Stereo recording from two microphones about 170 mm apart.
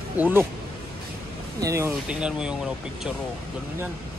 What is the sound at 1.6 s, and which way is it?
Speech, 15° right (ahead or behind).